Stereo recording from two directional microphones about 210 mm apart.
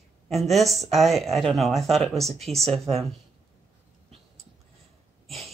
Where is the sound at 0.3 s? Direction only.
Centre (ahead or behind).